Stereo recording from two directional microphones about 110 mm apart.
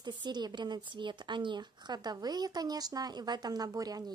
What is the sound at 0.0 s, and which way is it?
Speech, 40° right (ahead or behind).